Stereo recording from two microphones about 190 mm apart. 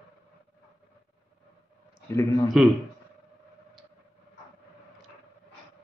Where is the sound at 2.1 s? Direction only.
15° left (ahead or behind).